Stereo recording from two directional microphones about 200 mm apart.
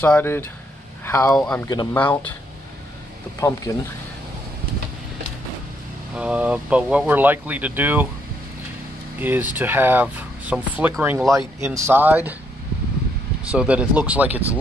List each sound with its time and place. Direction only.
0.0 s speech: 10° left (ahead or behind)
3.3 s speech: 15° left (ahead or behind)
6.1 s speech: 5° right (ahead or behind)
9.2 s speech: 10° right (ahead or behind)
13.5 s speech: 5° right (ahead or behind)